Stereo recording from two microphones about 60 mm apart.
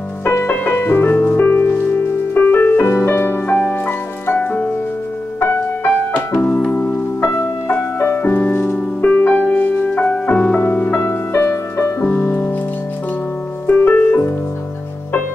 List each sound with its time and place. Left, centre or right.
0.2 s music: left
0.5 s music: left
6.7 s music: centre
8.0 s music: left
11.3 s music: left
12.0 s music: left
13.7 s music: left